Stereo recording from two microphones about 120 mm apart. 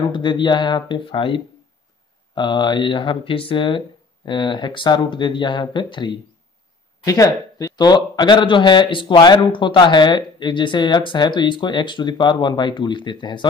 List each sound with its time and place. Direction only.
0.1 s speech: 40° left (ahead or behind)
7.1 s speech: 30° left (ahead or behind)